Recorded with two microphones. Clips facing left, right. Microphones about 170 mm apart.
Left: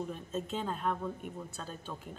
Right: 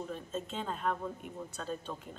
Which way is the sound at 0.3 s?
5° left (ahead or behind).